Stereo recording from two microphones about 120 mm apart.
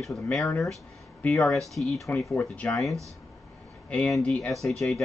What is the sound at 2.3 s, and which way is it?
Speech, 10° left (ahead or behind).